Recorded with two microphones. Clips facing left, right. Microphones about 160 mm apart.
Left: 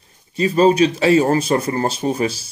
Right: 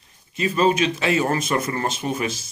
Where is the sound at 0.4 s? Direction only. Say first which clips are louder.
Left 6 dB; 35° left (ahead or behind).